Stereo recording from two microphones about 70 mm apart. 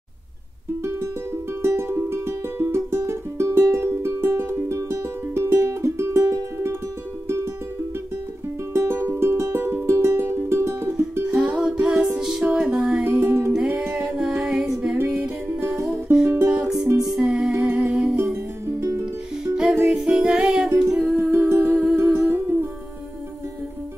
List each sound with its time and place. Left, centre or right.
0.8 s music: right
8.7 s music: right
11.2 s music: centre
13.1 s music: right
13.5 s music: centre
13.9 s humming: centre
15.9 s music: centre
19.4 s music: centre
21.2 s music: right